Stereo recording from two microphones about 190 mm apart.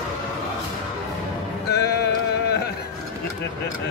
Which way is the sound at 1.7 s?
60° left (ahead or behind).